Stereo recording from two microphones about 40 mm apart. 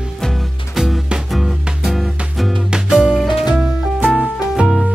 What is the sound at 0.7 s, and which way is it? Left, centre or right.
Music, centre.